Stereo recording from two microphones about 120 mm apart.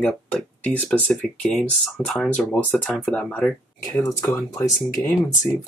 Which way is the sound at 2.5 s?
15° left (ahead or behind).